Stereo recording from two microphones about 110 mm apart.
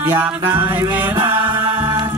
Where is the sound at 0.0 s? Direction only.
25° right (ahead or behind).